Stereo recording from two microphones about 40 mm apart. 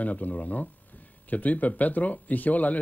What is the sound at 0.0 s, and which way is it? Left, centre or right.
Speech, left.